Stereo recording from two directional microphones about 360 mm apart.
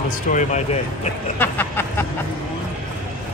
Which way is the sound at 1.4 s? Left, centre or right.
Centre.